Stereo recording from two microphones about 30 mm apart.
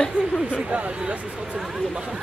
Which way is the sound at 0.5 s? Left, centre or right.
Right.